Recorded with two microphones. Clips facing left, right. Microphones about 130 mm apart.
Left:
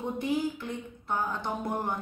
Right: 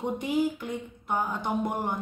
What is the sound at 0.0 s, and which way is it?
Speech, 15° right (ahead or behind).